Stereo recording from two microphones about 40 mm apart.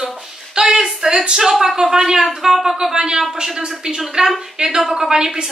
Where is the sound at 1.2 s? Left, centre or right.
Centre.